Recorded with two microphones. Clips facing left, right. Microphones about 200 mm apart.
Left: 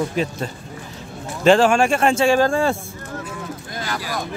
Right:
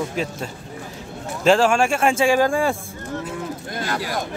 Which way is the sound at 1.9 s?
10° right (ahead or behind).